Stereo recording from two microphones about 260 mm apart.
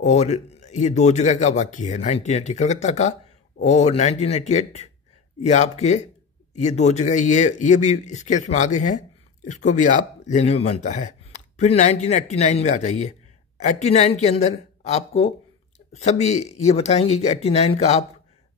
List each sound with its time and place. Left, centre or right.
0.0 s speech: left